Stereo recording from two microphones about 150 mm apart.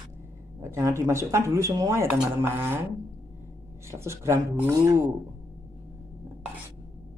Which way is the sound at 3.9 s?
20° right (ahead or behind).